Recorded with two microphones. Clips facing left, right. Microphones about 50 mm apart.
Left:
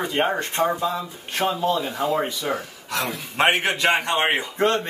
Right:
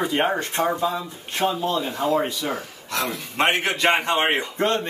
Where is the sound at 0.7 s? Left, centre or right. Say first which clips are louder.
Even; centre.